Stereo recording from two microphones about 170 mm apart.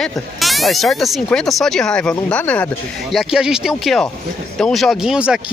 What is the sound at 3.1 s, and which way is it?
Speech, 5° right (ahead or behind).